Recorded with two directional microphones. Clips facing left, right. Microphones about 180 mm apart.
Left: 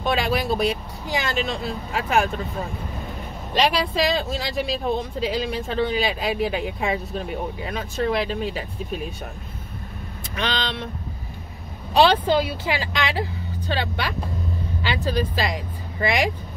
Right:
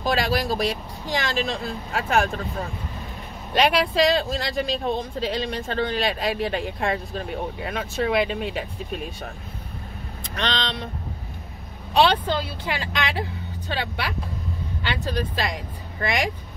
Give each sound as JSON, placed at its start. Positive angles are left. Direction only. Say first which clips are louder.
{"t": 0.0, "sound": "speech", "louder": "even", "side_deg": 0}
{"t": 3.5, "sound": "speech", "louder": "right 1 dB", "side_deg": 0}
{"t": 10.3, "sound": "speech", "louder": "left 1 dB", "side_deg": 5}
{"t": 11.9, "sound": "speech", "louder": "left 3 dB", "side_deg": 0}